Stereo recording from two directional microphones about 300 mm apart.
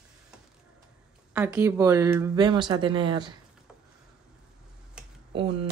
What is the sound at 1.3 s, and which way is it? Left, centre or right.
Speech, centre.